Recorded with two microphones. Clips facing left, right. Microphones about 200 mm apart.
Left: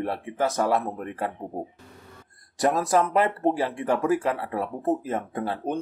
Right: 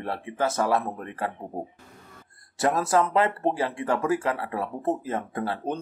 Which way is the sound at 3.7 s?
15° left (ahead or behind).